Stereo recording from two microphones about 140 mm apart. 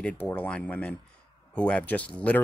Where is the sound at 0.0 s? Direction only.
10° left (ahead or behind).